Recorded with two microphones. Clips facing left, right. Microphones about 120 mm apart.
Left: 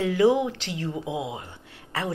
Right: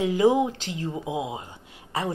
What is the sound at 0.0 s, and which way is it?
A woman's voice, 20° right (ahead or behind).